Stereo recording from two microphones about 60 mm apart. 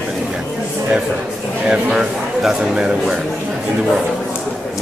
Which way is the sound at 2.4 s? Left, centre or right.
Centre.